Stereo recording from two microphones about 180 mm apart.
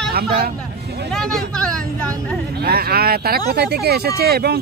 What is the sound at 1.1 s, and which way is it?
Speech, centre (ahead or behind).